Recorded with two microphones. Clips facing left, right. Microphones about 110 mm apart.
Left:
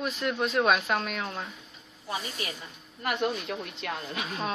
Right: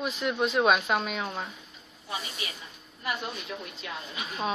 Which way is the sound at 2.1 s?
40° left (ahead or behind).